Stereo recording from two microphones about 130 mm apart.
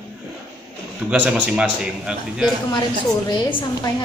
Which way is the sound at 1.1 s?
10° right (ahead or behind).